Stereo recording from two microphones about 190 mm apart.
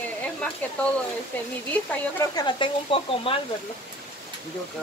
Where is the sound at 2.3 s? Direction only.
25° left (ahead or behind).